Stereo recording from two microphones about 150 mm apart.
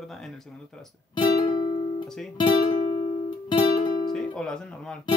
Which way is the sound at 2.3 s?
30° left (ahead or behind).